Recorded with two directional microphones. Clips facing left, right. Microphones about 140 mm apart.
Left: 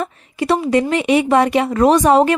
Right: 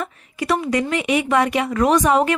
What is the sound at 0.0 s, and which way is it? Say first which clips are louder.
A woman's voice: left 5 dB; 30° left (ahead or behind).